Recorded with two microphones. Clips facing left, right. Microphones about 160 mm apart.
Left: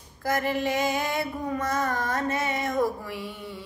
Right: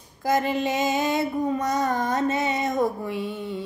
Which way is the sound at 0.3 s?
20° right (ahead or behind).